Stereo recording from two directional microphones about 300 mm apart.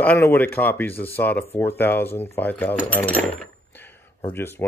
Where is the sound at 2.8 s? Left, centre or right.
Centre.